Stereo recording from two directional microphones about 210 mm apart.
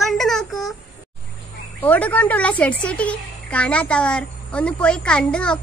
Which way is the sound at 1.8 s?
10° left (ahead or behind).